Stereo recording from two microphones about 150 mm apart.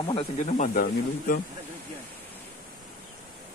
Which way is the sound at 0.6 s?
65° left (ahead or behind).